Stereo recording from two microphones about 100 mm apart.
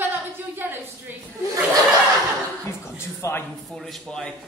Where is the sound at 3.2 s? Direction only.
30° left (ahead or behind).